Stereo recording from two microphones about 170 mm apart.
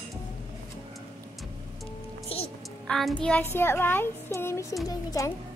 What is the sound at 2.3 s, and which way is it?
Music, 35° left (ahead or behind).